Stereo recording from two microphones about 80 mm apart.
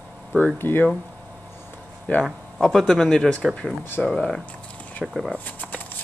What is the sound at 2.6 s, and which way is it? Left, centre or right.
A man's voice, centre.